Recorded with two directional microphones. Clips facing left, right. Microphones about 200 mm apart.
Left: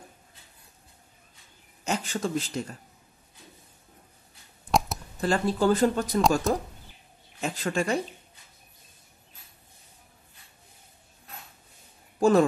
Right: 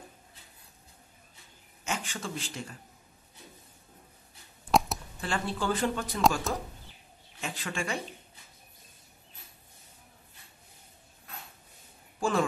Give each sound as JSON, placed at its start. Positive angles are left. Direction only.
{"t": 1.9, "sound": "speech", "side_deg": 40}
{"t": 4.6, "sound": "a sound", "side_deg": 0}
{"t": 5.2, "sound": "speech", "side_deg": 40}
{"t": 7.3, "sound": "speech", "side_deg": 40}
{"t": 12.2, "sound": "speech", "side_deg": 40}